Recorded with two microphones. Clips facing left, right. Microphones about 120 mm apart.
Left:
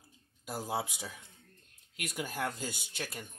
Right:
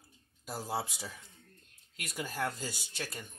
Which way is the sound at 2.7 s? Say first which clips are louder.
Even; 55° left (ahead or behind).